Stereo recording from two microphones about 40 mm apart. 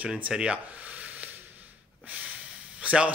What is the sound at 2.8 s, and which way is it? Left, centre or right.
Speech, right.